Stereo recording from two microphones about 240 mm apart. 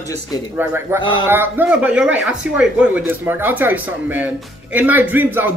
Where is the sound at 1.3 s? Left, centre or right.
Centre.